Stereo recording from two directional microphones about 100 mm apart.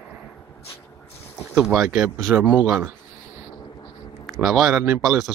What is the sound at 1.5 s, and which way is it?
Speech, 10° right (ahead or behind).